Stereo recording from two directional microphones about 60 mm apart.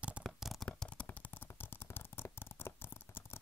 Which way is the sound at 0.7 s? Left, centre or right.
Centre.